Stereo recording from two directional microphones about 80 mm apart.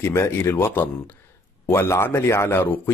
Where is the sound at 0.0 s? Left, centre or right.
Left.